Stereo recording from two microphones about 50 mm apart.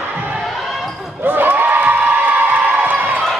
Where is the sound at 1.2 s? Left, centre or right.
Right.